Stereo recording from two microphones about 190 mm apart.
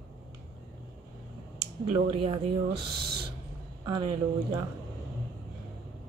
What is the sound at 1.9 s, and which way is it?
Speech, 30° right (ahead or behind).